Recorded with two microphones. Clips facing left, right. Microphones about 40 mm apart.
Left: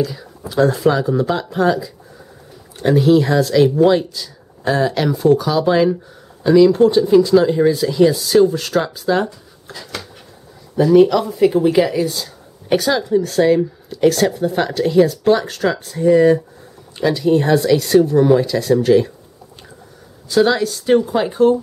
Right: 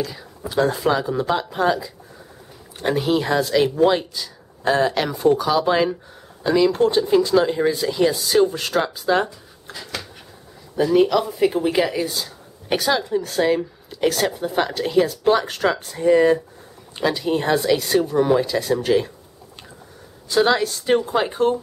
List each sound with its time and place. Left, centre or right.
0.0 s speech: centre
20.2 s speech: centre